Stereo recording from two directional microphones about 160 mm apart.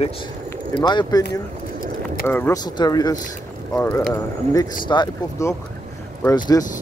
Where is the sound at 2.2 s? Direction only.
15° left (ahead or behind).